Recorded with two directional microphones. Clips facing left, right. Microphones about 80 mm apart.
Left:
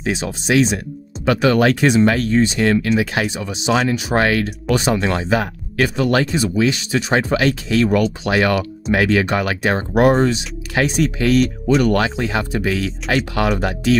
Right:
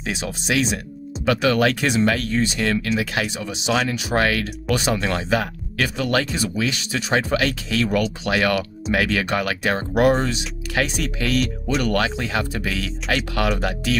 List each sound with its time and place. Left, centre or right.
0.0 s speech: left